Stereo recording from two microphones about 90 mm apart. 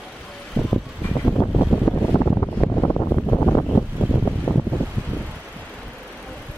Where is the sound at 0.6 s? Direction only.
20° left (ahead or behind).